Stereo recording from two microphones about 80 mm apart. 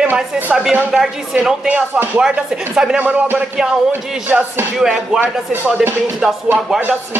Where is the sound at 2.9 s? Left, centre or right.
Right.